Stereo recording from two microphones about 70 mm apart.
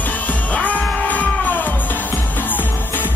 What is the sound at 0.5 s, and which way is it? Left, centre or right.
Music, left.